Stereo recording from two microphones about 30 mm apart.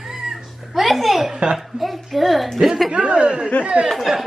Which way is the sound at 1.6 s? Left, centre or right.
Centre.